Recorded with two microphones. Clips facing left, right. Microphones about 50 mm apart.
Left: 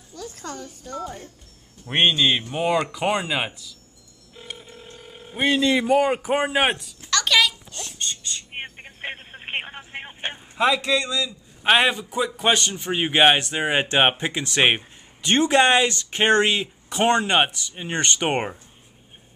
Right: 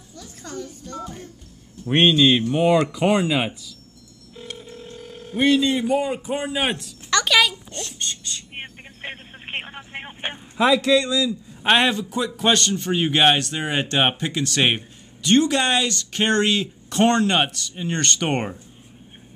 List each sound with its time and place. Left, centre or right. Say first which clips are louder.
0.1 s music: left 3 dB; left
1.9 s speech: right 3 dB; centre
4.4 s telephone: right 3 dB; centre
5.9 s a man's voice: left 3 dB; left
7.2 s a sound: right 1 dB; centre
8.5 s a sound: left 1 dB; centre
10.9 s a man's voice: right 5 dB; centre